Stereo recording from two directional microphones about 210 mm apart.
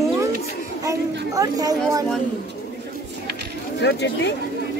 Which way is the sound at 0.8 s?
15° right (ahead or behind).